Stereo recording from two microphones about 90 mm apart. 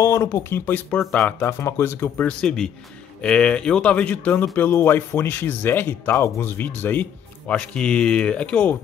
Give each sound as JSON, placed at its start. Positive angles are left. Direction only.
{"t": 0.0, "sound": "speech", "side_deg": 35}
{"t": 1.4, "sound": "speech", "side_deg": 30}
{"t": 2.2, "sound": "speech", "side_deg": 5}